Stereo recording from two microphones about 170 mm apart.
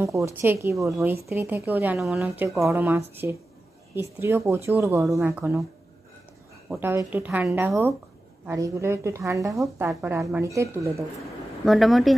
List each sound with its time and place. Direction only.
0.0 s a woman's voice: 20° right (ahead or behind)
6.8 s speech: 15° right (ahead or behind)
11.6 s a woman's voice: centre (ahead or behind)